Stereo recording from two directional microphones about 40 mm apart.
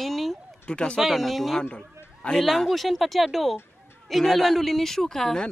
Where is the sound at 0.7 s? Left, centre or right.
Left.